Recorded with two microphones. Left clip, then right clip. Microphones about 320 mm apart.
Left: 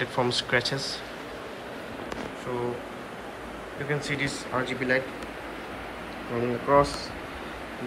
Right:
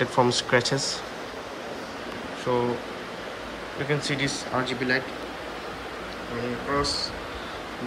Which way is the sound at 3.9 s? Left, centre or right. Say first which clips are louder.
Right 2 dB; centre.